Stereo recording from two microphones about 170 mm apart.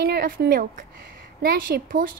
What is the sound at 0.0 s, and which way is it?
A woman's voice, 65° right (ahead or behind).